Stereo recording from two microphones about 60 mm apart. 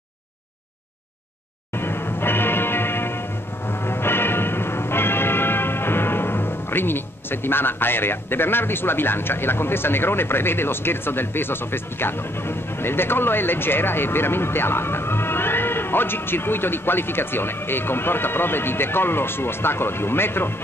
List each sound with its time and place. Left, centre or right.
1.8 s music: left